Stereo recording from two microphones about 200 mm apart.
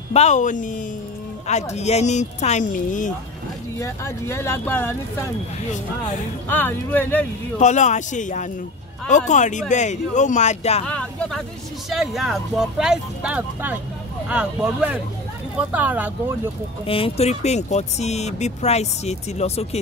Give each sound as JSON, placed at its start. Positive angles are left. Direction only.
{"t": 0.1, "sound": "speech", "side_deg": 35}
{"t": 3.8, "sound": "speech", "side_deg": 15}
{"t": 6.5, "sound": "speech", "side_deg": 10}
{"t": 7.5, "sound": "speech", "side_deg": 35}
{"t": 10.9, "sound": "speech", "side_deg": 5}
{"t": 16.8, "sound": "speech", "side_deg": 30}